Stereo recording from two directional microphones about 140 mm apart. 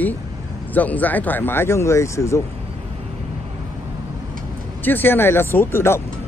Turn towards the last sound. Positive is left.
turn(degrees=15)  # may be behind; listen again after turning